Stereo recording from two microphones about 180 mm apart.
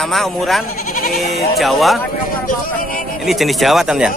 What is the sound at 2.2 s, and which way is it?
Speech, 50° left (ahead or behind).